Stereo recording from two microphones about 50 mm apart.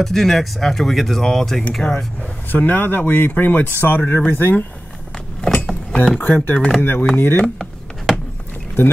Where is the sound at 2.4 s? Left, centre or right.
Left.